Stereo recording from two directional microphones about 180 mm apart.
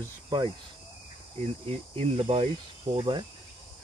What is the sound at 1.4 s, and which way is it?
Speech, 35° right (ahead or behind).